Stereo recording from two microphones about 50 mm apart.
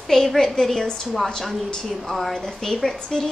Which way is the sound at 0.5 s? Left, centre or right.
Centre.